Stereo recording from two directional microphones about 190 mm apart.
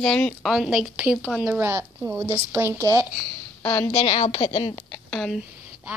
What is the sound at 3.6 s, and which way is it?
Speech, 10° left (ahead or behind).